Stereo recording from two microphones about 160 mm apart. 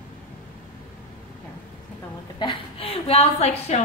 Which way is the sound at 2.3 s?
30° left (ahead or behind).